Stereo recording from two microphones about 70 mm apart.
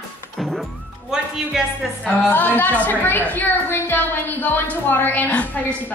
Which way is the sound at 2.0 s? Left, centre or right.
Left.